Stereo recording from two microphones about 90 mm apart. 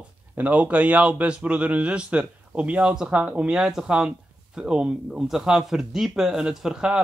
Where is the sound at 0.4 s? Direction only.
15° right (ahead or behind).